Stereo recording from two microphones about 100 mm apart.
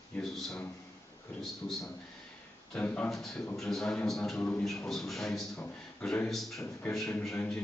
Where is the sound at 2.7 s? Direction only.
15° left (ahead or behind).